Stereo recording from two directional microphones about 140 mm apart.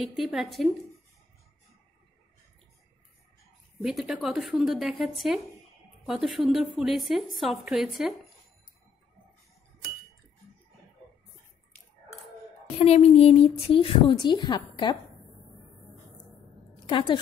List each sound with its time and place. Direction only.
0.0 s a woman's voice: centre (ahead or behind)
3.8 s a woman's voice: 5° right (ahead or behind)
12.7 s a woman's voice: 50° left (ahead or behind); by 15.0 s 30° left (ahead or behind)
16.8 s a woman's voice: 35° left (ahead or behind)